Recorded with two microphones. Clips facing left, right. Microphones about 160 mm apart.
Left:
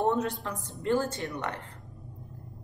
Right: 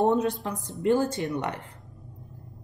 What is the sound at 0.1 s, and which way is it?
Speech, 20° right (ahead or behind).